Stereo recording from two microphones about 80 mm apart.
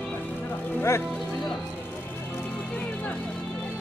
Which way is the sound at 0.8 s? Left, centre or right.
Left.